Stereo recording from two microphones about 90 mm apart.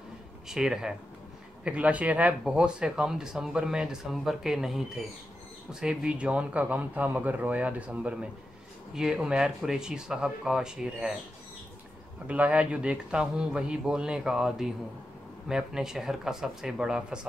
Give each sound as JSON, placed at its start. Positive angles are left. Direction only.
{"t": 0.5, "sound": "speech", "side_deg": -5}
{"t": 12.3, "sound": "speech", "side_deg": -15}